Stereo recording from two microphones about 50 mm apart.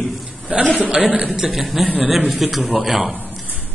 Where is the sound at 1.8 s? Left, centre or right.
Right.